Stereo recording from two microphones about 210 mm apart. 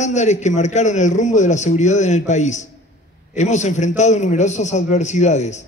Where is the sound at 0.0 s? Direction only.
35° left (ahead or behind).